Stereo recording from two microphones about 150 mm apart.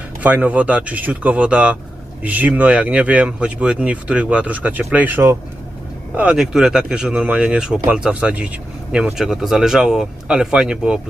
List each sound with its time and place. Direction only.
0.2 s speech: 10° right (ahead or behind)